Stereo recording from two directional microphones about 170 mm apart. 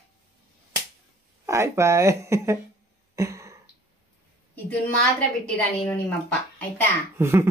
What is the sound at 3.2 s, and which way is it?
Throat clearing, 15° right (ahead or behind).